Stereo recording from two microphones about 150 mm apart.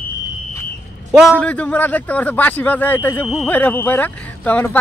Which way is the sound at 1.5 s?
10° left (ahead or behind).